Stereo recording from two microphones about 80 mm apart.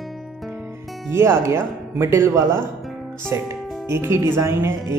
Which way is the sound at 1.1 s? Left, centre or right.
Right.